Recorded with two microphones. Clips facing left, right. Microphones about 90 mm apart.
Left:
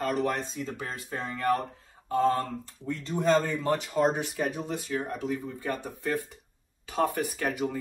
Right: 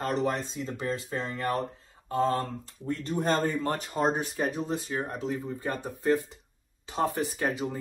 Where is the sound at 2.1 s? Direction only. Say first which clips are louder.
Left 2 dB; 25° right (ahead or behind).